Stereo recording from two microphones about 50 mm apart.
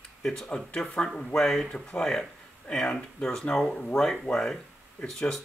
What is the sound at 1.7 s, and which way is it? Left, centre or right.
Speech, left.